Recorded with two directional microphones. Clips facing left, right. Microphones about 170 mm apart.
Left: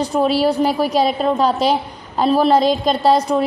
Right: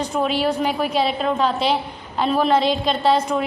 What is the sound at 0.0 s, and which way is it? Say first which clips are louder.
A woman's voice: left 5 dB; 35° left (ahead or behind).